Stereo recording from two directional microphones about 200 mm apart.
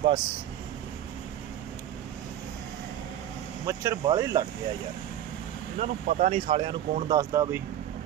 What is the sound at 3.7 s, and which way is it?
Speech, 15° right (ahead or behind).